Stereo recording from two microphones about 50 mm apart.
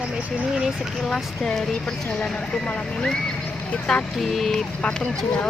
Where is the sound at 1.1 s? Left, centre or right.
Centre.